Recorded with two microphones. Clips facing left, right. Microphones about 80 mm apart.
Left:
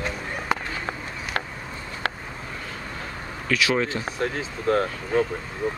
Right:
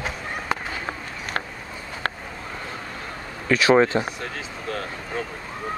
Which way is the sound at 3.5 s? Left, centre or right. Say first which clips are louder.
Right 6 dB; right.